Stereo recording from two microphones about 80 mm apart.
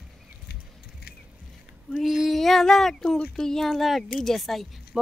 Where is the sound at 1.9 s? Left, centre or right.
Centre.